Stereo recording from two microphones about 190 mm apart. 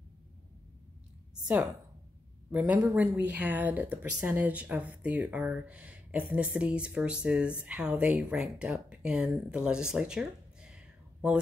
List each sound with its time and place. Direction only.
2.5 s speech: 10° right (ahead or behind)